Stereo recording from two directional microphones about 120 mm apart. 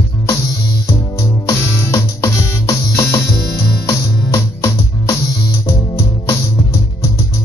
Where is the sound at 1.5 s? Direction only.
25° left (ahead or behind).